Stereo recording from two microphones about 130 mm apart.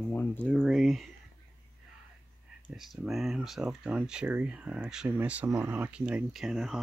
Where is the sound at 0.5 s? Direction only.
Centre (ahead or behind).